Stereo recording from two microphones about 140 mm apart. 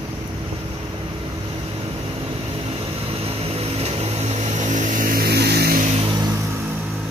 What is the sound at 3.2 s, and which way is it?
Vehicle, 45° right (ahead or behind).